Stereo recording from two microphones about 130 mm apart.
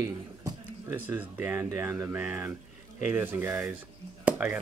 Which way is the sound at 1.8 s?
15° right (ahead or behind).